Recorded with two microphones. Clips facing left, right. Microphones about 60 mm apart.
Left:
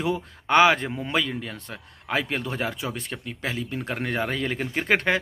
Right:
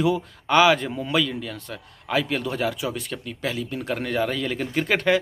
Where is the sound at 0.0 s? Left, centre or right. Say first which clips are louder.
Right 4 dB; left.